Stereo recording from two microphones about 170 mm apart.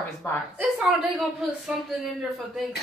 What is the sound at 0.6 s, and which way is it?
Speech, centre (ahead or behind).